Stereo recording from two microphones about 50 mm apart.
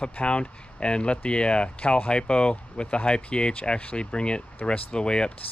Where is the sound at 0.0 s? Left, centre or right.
Left.